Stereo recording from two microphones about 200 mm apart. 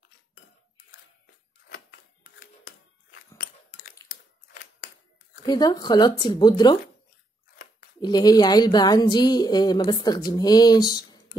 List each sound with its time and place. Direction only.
1.7 s typewriter: 60° left (ahead or behind)
5.4 s a woman's voice: 20° left (ahead or behind)
8.0 s a woman's voice: 20° left (ahead or behind)